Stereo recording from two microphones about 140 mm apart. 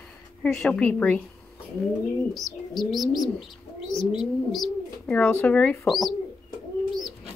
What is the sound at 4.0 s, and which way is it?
Bird, 35° left (ahead or behind).